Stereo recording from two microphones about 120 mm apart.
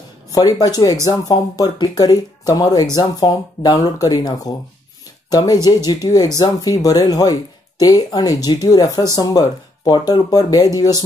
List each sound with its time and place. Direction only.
0.3 s speech: 35° left (ahead or behind)